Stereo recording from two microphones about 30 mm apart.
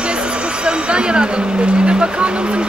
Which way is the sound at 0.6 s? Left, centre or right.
Right.